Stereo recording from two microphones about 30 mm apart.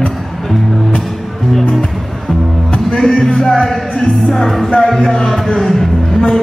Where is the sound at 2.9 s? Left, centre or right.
Centre.